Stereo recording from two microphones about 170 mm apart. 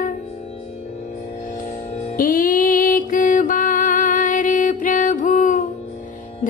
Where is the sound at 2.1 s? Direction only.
55° left (ahead or behind).